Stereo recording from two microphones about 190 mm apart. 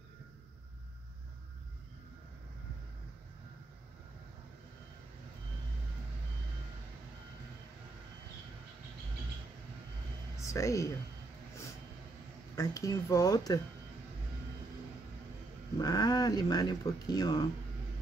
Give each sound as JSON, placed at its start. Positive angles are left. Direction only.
{"t": 10.4, "sound": "speech", "side_deg": 15}
{"t": 12.5, "sound": "speech", "side_deg": 15}
{"t": 15.8, "sound": "speech", "side_deg": 20}